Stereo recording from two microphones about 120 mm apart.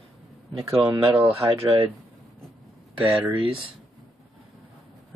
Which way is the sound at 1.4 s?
45° right (ahead or behind).